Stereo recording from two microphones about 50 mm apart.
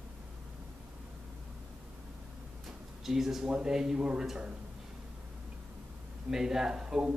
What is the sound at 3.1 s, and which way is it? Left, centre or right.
Speech, centre.